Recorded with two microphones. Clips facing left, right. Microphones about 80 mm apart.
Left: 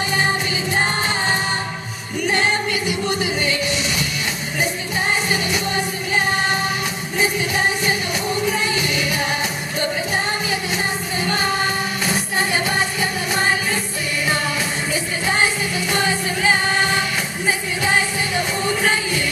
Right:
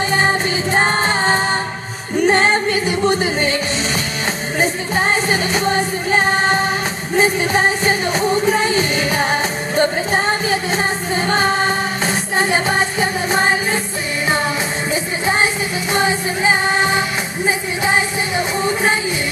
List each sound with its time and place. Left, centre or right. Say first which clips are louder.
0.1 s music: right 3 dB; right
4.6 s music: right 5 dB; right
15.9 s music: right 4 dB; right